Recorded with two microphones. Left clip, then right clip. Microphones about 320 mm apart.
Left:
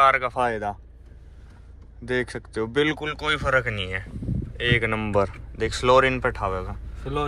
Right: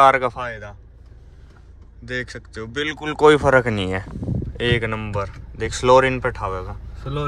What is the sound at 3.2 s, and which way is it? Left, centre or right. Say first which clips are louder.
Speech: right 11 dB; centre.